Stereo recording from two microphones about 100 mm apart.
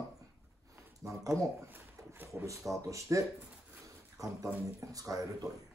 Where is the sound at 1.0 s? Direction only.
30° right (ahead or behind).